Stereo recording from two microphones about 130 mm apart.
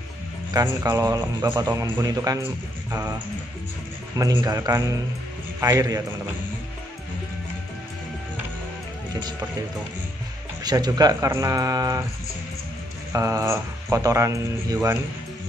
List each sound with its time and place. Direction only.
0.5 s a man's voice: 25° right (ahead or behind)
4.4 s a man's voice: 25° right (ahead or behind)
10.6 s a man's voice: 30° right (ahead or behind)
13.1 s a man's voice: 25° right (ahead or behind)